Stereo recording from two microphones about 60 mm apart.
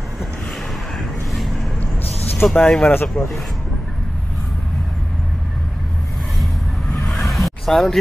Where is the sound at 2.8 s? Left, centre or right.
Left.